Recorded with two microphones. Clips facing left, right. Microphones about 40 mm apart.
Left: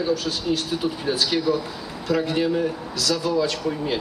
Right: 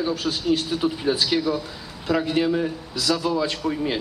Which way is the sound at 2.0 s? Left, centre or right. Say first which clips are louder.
Right 1 dB; right.